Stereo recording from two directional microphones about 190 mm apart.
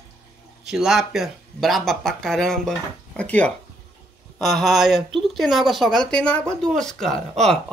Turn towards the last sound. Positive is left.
turn(degrees=0)  # may be behind; listen again after turning